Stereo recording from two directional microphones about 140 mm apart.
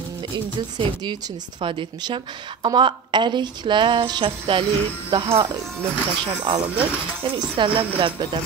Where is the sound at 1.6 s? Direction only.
40° right (ahead or behind).